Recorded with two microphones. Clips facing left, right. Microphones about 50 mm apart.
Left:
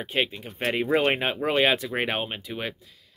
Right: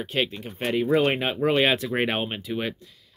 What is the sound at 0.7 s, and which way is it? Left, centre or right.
Speech, left.